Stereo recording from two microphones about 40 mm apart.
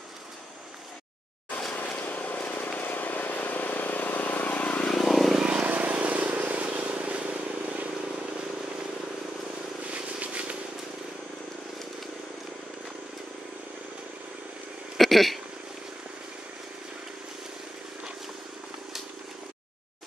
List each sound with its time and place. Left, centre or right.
1.8 s vehicle: left
4.9 s vehicle: centre
5.3 s vehicle: right
5.6 s vehicle: right
9.8 s vehicle: right
15.0 s a sound: centre